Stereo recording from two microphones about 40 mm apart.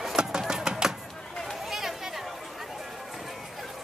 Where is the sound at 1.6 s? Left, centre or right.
Centre.